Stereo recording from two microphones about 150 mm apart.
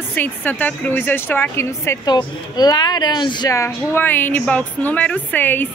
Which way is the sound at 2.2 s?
30° left (ahead or behind).